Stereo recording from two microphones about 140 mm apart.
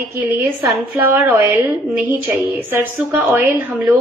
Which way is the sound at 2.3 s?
15° right (ahead or behind).